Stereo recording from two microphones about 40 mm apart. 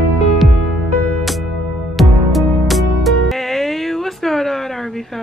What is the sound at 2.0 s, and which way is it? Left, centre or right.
Music, centre.